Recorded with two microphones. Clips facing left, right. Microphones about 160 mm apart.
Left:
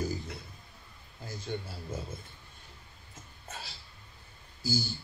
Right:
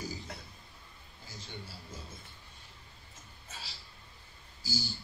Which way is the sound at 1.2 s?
55° left (ahead or behind).